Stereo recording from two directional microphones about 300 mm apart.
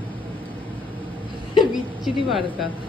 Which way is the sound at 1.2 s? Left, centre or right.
Centre.